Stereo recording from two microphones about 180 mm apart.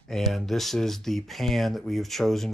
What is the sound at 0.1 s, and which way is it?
Speech, centre (ahead or behind).